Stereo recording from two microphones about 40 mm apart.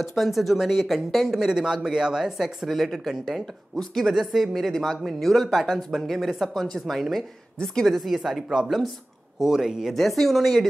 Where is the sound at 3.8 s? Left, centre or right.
Centre.